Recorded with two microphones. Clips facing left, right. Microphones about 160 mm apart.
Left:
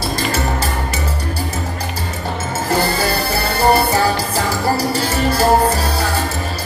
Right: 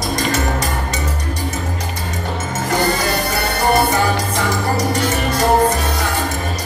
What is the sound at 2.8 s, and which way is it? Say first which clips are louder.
Music: even; 30° left (ahead or behind).